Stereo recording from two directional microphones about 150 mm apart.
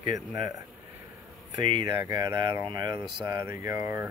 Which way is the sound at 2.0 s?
25° right (ahead or behind).